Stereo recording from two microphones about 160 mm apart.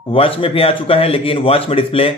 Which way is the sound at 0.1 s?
35° left (ahead or behind).